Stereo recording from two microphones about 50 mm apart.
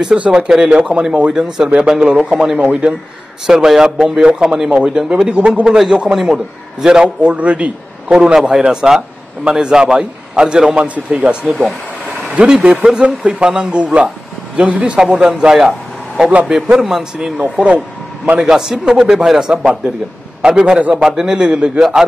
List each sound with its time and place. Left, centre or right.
0.2 s a man's voice: right
1.3 s a man's voice: centre; by 8.2 s right
8.4 s a man's voice: centre
10.8 s a man's voice: right
11.4 s speech: centre
12.4 s a man's voice: right
12.8 s a man's voice: centre
14.7 s a man's voice: right
15.0 s a man's voice: centre
16.7 s a man's voice: centre
17.4 s a man's voice: right
18.4 s a man's voice: centre
19.5 s a man's voice: right